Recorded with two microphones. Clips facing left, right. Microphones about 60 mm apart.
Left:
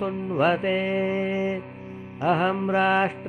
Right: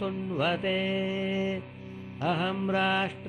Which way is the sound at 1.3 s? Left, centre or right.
Left.